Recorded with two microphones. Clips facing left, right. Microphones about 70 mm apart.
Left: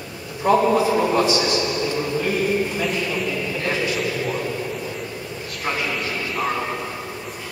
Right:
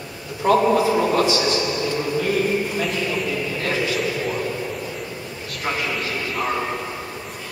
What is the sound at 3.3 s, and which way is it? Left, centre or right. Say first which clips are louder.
Vehicle: even; centre.